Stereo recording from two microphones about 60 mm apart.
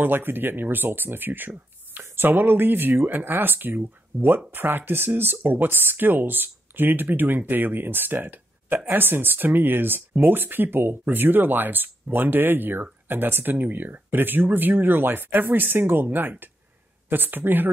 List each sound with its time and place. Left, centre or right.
0.0 s speech: right